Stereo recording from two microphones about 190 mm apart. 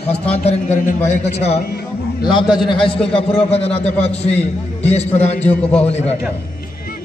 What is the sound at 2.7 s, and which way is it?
A man's voice, 30° left (ahead or behind).